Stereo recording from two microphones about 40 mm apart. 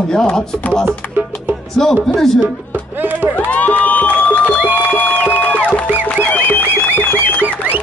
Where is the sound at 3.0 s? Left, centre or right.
Right.